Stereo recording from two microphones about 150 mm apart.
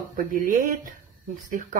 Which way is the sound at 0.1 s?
65° right (ahead or behind).